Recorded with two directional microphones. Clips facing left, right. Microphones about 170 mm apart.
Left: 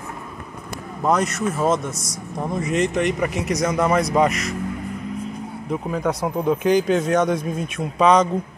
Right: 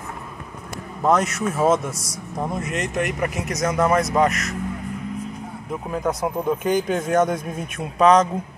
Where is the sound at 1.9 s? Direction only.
30° right (ahead or behind).